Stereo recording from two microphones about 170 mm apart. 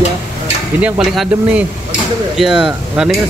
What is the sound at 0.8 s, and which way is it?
Speech, 5° right (ahead or behind).